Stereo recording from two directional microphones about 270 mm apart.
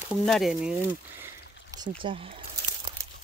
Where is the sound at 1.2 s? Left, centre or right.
Centre.